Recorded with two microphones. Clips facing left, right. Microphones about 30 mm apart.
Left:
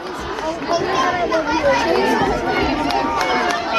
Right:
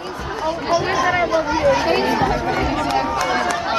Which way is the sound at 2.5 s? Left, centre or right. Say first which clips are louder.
Left 1 dB; left.